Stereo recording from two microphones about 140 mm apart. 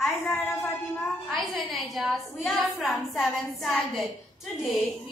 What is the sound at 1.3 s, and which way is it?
A woman's voice, centre (ahead or behind).